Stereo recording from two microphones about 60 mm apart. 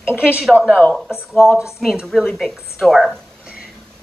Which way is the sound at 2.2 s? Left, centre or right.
Centre.